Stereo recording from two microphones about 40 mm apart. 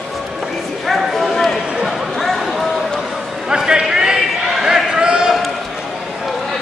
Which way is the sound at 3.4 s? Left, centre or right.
Centre.